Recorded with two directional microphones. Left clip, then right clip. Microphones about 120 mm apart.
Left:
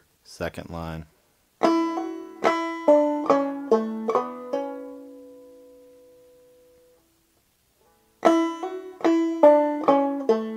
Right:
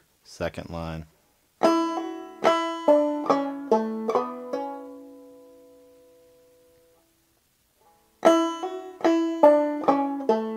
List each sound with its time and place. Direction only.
0.2 s speech: 25° right (ahead or behind)
1.6 s banjo: 20° left (ahead or behind)
8.2 s banjo: 15° left (ahead or behind)